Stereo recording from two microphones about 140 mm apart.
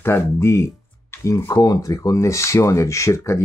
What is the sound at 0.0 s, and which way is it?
Speech, 20° left (ahead or behind).